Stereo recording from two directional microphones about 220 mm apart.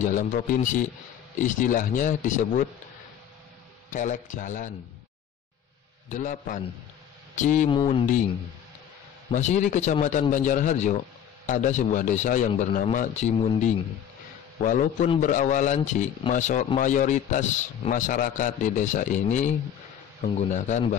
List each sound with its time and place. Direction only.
0.0 s a man's voice: 35° left (ahead or behind)
3.9 s a man's voice: 35° left (ahead or behind)
6.0 s a man's voice: 35° left (ahead or behind)
9.3 s a man's voice: 35° left (ahead or behind)
14.6 s a man's voice: 35° left (ahead or behind)